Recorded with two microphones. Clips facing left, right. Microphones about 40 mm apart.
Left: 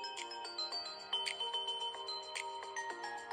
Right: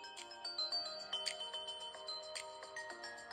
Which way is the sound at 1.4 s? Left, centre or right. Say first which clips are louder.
Left 7 dB; left.